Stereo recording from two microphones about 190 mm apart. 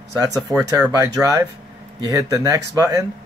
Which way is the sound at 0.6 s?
20° right (ahead or behind).